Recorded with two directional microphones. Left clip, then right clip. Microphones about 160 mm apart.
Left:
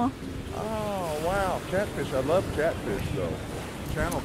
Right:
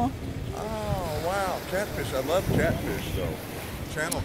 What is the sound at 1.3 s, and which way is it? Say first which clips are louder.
Speech: even; 25° left (ahead or behind).